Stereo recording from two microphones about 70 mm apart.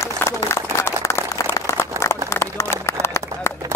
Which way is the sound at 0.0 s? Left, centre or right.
Left.